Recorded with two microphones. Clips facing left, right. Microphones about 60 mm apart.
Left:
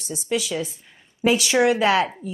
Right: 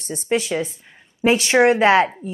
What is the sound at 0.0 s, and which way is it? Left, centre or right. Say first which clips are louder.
A woman's voice: right 4 dB; right.